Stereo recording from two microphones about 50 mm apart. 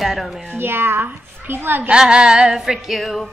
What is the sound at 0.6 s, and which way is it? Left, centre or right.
A child's voice, right.